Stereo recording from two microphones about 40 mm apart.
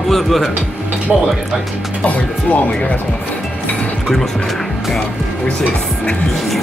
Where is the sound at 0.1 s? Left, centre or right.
Centre.